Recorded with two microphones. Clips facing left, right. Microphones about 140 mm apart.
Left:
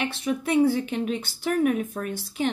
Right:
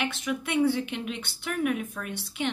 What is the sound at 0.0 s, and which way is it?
Speech, 35° left (ahead or behind).